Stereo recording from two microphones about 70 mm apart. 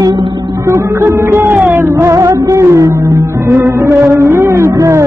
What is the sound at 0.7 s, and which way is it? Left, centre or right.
Music, right.